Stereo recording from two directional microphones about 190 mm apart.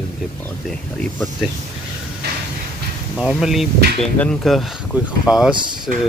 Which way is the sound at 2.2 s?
60° right (ahead or behind).